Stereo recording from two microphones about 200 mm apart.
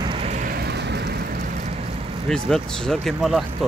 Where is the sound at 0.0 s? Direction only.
30° right (ahead or behind); by 1.1 s 60° right (ahead or behind).